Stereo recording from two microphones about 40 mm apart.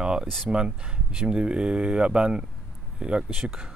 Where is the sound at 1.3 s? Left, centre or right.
Right.